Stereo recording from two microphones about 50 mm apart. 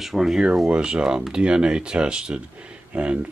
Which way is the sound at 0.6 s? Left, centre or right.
Centre.